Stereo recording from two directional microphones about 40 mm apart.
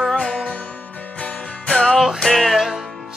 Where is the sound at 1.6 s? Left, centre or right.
Centre.